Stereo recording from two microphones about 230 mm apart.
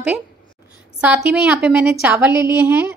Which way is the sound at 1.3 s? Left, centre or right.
Centre.